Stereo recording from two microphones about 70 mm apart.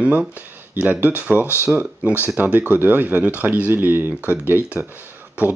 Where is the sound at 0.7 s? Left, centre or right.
Right.